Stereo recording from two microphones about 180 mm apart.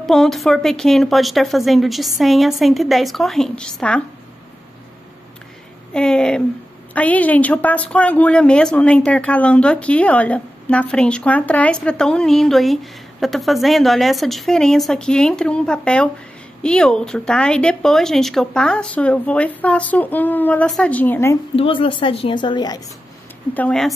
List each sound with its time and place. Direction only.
0.0 s a woman's voice: centre (ahead or behind)
5.9 s a woman's voice: 5° left (ahead or behind)
21.5 s speech: 30° left (ahead or behind)
23.5 s speech: 5° left (ahead or behind)